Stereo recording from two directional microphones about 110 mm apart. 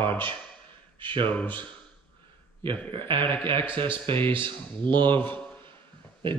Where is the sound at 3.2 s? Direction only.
20° left (ahead or behind).